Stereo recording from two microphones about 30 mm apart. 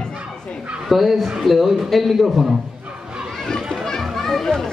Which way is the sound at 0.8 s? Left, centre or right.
Centre.